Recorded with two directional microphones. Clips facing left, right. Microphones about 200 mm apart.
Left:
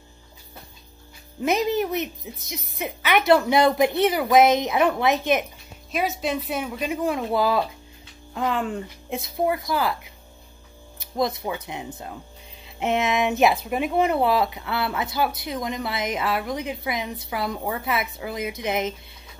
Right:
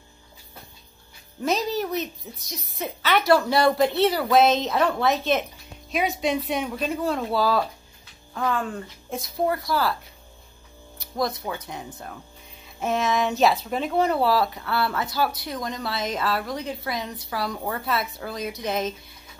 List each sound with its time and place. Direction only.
1.4 s speech: 20° left (ahead or behind)
5.9 s speech: centre (ahead or behind); by 9.9 s 20° left (ahead or behind)
11.1 s speech: 20° left (ahead or behind)